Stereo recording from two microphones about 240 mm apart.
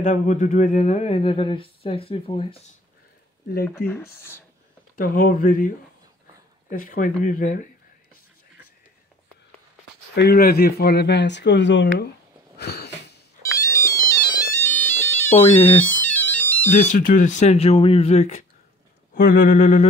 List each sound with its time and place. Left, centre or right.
0.0 s speech: left
3.7 s speech: centre
4.9 s speech: left
6.7 s speech: left
10.1 s speech: left
12.5 s a sound: left
13.4 s ringtone: centre
16.7 s speech: left